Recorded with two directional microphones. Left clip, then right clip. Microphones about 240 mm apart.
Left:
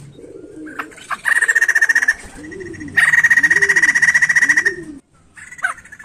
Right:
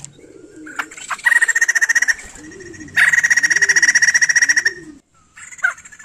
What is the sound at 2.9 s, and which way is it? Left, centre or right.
Frog, centre.